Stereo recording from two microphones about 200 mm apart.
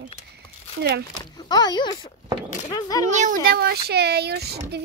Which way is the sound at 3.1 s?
35° right (ahead or behind).